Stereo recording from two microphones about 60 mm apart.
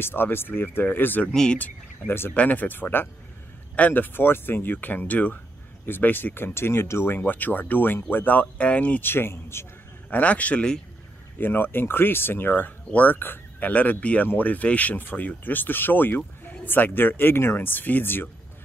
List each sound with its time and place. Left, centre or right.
0.0 s speech: left
1.3 s speech: centre
1.6 s speech: left
2.3 s speech: left
10.0 s speech: left
11.3 s speech: left